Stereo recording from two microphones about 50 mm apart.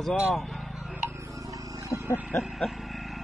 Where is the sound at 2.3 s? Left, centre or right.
Left.